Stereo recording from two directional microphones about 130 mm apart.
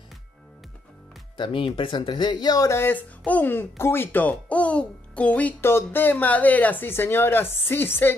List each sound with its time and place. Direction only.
1.3 s speech: 40° left (ahead or behind); by 8.2 s 15° left (ahead or behind)